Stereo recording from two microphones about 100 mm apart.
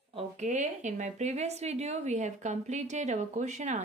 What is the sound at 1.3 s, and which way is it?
Speech, 90° right.